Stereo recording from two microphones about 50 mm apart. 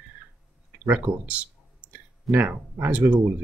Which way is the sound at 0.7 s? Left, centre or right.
Right.